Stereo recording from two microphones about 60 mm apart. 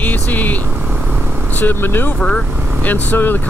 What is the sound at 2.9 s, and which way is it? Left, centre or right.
Speech, left.